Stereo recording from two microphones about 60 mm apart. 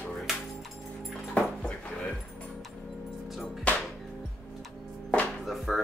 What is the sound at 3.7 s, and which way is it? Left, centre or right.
Music, left.